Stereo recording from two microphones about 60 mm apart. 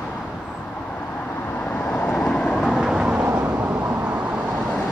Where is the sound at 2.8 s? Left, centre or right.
Centre.